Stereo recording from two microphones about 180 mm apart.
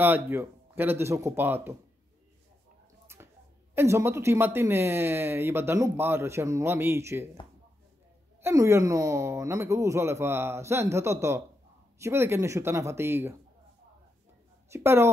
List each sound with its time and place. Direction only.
0.0 s speech: 10° right (ahead or behind)
3.1 s a sound: 15° right (ahead or behind)
3.7 s speech: 15° right (ahead or behind)
8.4 s speech: 15° right (ahead or behind)
14.7 s speech: 15° right (ahead or behind)